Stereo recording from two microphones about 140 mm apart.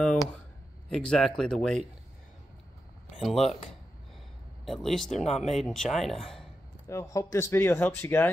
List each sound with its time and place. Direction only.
0.0 s a sound: 5° left (ahead or behind)
0.8 s speech: 5° left (ahead or behind)
3.2 s speech: centre (ahead or behind)
4.6 s speech: centre (ahead or behind)
6.9 s a man's voice: 20° left (ahead or behind)